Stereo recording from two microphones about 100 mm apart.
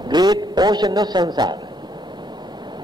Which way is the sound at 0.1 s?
45° right (ahead or behind).